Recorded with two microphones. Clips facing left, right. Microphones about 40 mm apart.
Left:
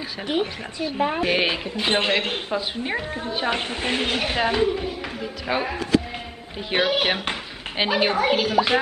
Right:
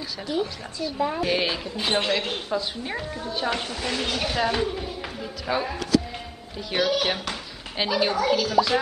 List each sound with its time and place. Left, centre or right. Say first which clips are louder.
0.3 s speech: left 3 dB; left
1.2 s a woman's voice: left 3 dB; left
4.5 s a woman's voice: left 4 dB; centre; by 8.7 s left